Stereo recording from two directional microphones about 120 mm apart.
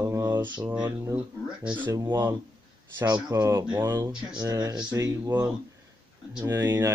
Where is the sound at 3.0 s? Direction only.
30° right (ahead or behind).